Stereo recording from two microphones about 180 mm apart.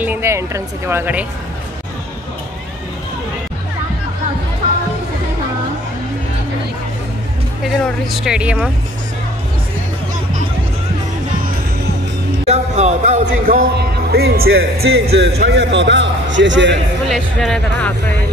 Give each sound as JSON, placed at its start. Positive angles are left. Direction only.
{"t": 0.0, "sound": "speech", "side_deg": -10}
{"t": 7.6, "sound": "speech", "side_deg": 0}
{"t": 12.4, "sound": "speech", "side_deg": -40}
{"t": 17.1, "sound": "speech", "side_deg": 0}